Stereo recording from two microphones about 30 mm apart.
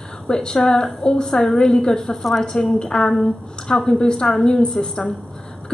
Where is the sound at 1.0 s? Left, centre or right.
Centre.